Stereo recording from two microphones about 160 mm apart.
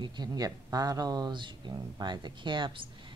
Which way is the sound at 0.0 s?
25° right (ahead or behind).